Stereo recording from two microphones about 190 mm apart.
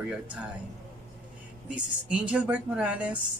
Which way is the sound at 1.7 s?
5° right (ahead or behind).